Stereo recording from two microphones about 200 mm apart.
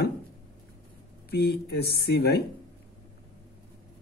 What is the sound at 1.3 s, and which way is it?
Speech, 55° left (ahead or behind).